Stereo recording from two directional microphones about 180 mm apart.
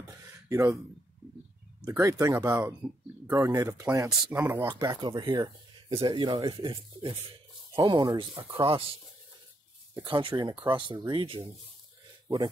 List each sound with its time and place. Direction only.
0.5 s speech: 15° right (ahead or behind)
1.9 s speech: 15° right (ahead or behind)
4.6 s speech: 25° right (ahead or behind)
9.9 s speech: 25° right (ahead or behind)